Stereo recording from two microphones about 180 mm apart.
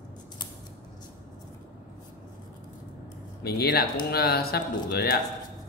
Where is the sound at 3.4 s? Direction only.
60° left (ahead or behind).